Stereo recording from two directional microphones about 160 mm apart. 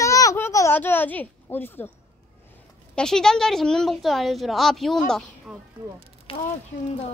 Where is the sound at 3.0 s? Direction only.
5° left (ahead or behind).